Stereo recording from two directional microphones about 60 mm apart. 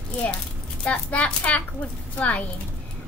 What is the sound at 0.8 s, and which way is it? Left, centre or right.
A child's voice, left.